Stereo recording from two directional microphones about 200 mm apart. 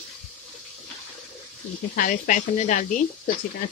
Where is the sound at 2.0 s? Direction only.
40° left (ahead or behind).